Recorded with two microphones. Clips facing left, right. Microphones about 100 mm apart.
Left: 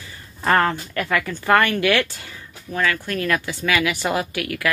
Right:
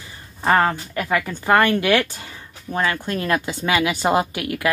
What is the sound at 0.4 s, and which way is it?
A woman's voice, 15° right (ahead or behind).